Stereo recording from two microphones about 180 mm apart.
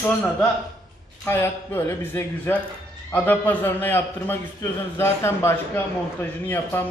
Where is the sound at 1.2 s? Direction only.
15° left (ahead or behind).